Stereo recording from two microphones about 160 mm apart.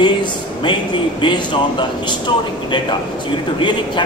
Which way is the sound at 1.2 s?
30° left (ahead or behind).